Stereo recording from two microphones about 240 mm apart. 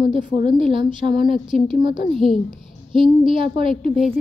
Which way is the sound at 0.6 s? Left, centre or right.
Right.